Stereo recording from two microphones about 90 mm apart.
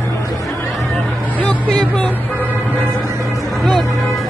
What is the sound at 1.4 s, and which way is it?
Speech, 15° left (ahead or behind).